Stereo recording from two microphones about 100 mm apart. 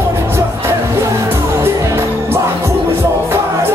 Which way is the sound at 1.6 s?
25° right (ahead or behind).